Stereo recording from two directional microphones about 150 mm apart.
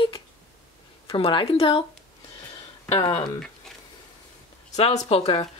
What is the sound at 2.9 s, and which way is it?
Speech, 35° left (ahead or behind).